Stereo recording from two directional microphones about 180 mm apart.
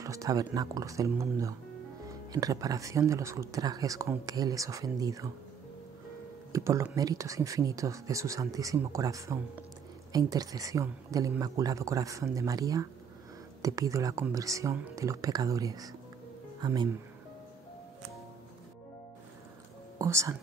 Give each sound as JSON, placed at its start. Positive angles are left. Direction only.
{"t": 0.0, "sound": "speech", "side_deg": -20}
{"t": 6.5, "sound": "speech", "side_deg": -15}
{"t": 20.0, "sound": "speech", "side_deg": -15}